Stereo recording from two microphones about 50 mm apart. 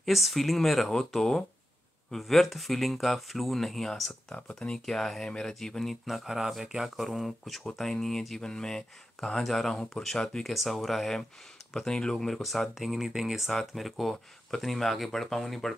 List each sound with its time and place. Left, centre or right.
0.0 s speech: centre
4.3 s speech: centre
4.7 s speech: centre
6.0 s speech: centre
8.4 s speech: centre